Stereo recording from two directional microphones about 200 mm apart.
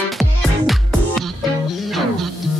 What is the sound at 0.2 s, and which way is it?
Music, centre (ahead or behind).